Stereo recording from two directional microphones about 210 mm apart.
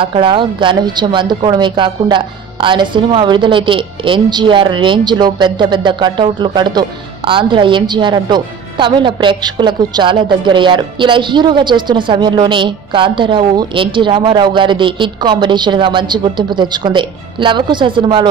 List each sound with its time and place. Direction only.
0.0 s speech: 25° right (ahead or behind)